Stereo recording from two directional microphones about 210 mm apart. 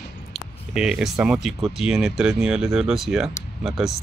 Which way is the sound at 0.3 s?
5° right (ahead or behind).